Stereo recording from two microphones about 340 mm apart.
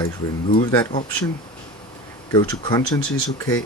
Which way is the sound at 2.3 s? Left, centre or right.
Centre.